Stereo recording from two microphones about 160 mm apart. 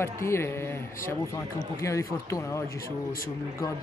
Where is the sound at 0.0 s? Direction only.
15° left (ahead or behind).